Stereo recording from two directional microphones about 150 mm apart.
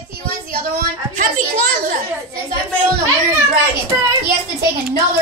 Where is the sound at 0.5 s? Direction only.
70° right (ahead or behind).